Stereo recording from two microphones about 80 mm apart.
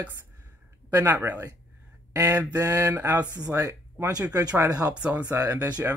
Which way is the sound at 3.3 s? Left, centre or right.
Right.